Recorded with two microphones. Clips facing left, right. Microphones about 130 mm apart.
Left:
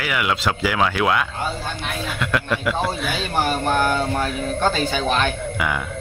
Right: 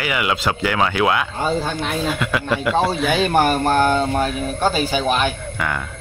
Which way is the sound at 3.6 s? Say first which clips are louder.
Right 3 dB; 40° right (ahead or behind).